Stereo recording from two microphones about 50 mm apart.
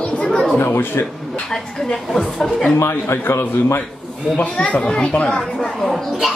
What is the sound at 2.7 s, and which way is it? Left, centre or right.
Speech, left.